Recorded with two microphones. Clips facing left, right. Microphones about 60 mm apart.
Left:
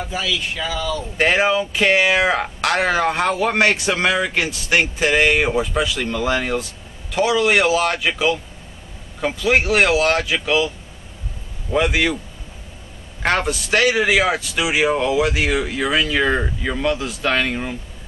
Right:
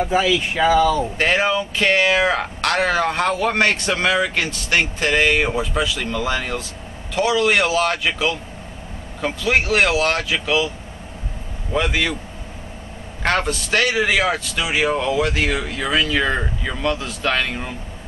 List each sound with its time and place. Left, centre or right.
0.1 s speech: right
1.1 s speech: centre
11.7 s speech: centre
13.2 s speech: centre